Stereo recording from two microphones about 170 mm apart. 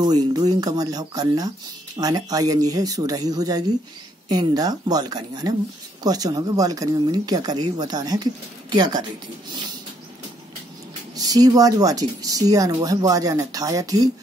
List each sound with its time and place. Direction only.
0.0 s speech: 25° right (ahead or behind)
11.1 s speech: 20° right (ahead or behind)